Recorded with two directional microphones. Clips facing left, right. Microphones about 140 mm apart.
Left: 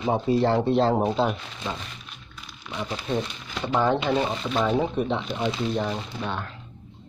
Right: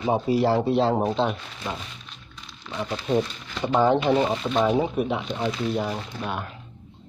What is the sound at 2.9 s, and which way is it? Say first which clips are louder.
Speech: right 5 dB; 15° right (ahead or behind).